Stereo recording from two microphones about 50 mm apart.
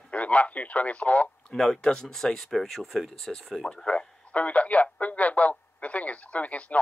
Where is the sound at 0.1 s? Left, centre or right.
Left.